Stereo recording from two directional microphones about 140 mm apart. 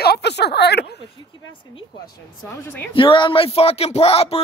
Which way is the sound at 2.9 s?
40° left (ahead or behind).